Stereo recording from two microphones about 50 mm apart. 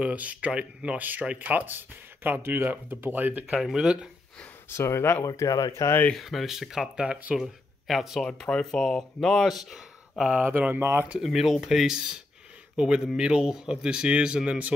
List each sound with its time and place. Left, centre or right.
0.0 s speech: right
3.7 s speech: centre
4.6 s speech: left
5.3 s speech: left
6.1 s speech: centre
7.0 s speech: right
7.3 s speech: centre
8.2 s speech: centre
9.7 s a sound: centre
10.7 s speech: right
11.2 s speech: centre